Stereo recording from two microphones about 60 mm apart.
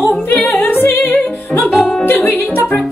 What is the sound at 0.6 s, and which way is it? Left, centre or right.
Music, left.